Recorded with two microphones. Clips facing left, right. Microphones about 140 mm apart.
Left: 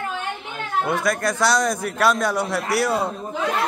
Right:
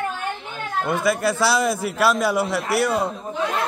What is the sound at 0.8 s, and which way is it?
A man's voice, centre (ahead or behind).